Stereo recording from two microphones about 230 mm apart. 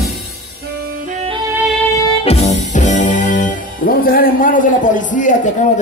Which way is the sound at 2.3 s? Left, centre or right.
Left.